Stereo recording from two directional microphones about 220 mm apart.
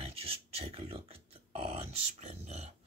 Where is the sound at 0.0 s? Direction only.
25° right (ahead or behind).